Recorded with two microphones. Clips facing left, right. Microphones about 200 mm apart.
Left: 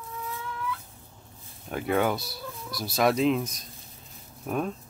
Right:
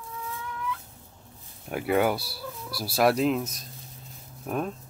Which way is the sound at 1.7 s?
5° right (ahead or behind).